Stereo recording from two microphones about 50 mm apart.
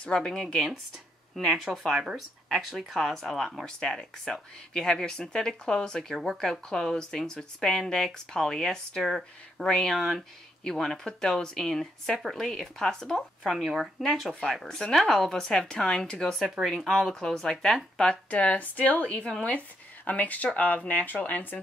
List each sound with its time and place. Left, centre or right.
0.0 s speech: centre
1.6 s speech: centre
4.2 s speech: centre
6.1 s speech: centre
6.7 s speech: centre
9.9 s speech: centre
10.6 s speech: centre
13.5 s speech: centre
14.5 s speech: centre
16.6 s speech: centre
17.1 s speech: centre
18.3 s a woman's voice: left